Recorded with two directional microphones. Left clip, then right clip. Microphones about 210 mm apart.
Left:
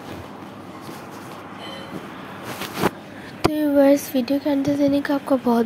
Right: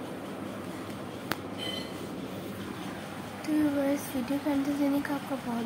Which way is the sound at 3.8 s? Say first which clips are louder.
Left 13 dB; 30° left (ahead or behind).